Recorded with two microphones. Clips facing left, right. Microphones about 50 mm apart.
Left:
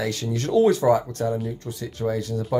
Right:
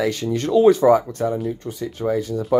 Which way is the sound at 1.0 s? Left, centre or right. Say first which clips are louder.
Right 3 dB; right.